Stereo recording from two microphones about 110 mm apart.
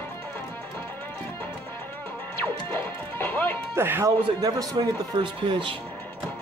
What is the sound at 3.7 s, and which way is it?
Speech, 20° right (ahead or behind).